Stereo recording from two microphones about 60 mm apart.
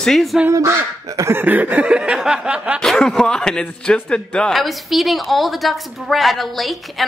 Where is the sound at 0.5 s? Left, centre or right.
Right.